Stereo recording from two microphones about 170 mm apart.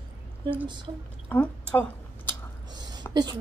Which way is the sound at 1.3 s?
10° left (ahead or behind).